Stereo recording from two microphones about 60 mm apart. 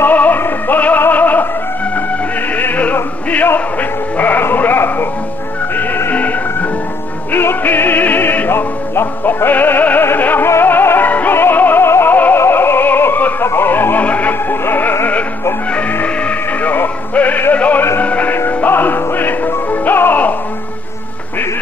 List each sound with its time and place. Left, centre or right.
0.0 s music: left
2.5 s music: left
6.1 s music: left